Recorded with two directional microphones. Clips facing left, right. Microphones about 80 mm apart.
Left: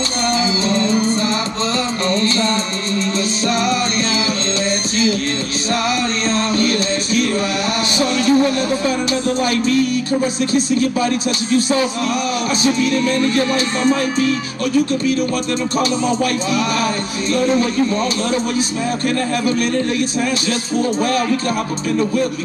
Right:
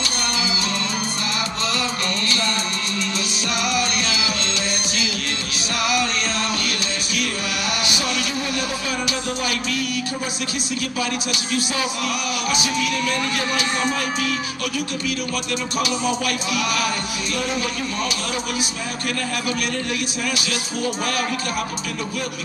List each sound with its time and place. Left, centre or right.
0.7 s music: left
3.5 s music: left
5.9 s music: left
8.0 s music: left
9.4 s speech: left
16.8 s speech: left